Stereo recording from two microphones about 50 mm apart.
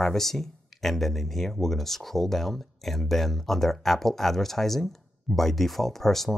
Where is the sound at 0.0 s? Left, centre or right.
Centre.